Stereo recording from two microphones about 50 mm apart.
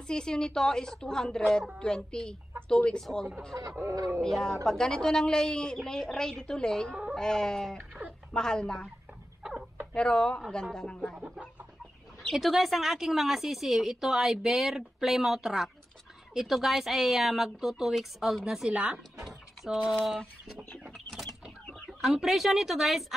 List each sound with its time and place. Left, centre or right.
0.0 s a woman's voice: centre
9.4 s a sound: centre
9.9 s a woman's voice: centre
12.3 s a woman's voice: centre
19.2 s typing: centre
20.1 s a woman's voice: centre
21.7 s speech: centre